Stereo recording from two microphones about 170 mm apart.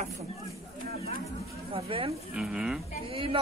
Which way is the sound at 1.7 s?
30° right (ahead or behind).